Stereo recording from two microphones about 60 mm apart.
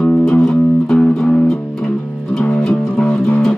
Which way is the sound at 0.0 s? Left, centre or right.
Centre.